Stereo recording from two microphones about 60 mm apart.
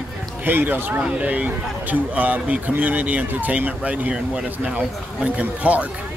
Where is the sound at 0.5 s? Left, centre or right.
Right.